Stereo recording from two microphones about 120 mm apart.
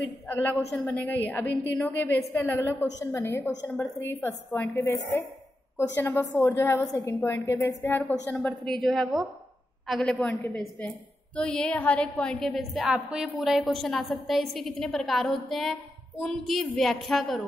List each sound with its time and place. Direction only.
0.3 s a woman's voice: 15° left (ahead or behind)
7.6 s a woman's voice: 15° left (ahead or behind)
8.6 s a woman's voice: centre (ahead or behind)